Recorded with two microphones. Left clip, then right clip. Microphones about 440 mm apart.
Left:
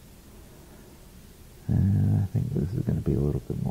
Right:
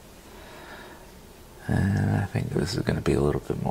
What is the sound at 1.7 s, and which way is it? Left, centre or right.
Speech, centre.